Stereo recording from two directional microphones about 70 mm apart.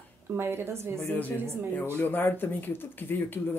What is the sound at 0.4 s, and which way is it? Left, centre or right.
Speech, right.